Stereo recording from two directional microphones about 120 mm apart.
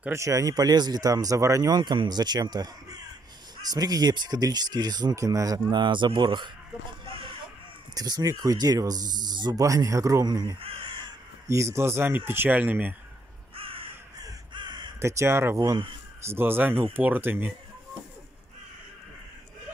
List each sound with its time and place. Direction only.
0.1 s speech: 25° right (ahead or behind)
7.9 s speech: 30° right (ahead or behind)
10.6 s crow: 40° right (ahead or behind)
11.4 s speech: 25° right (ahead or behind)
13.6 s crow: 50° right (ahead or behind)
14.2 s crow: 40° right (ahead or behind)
15.0 s speech: 25° right (ahead or behind)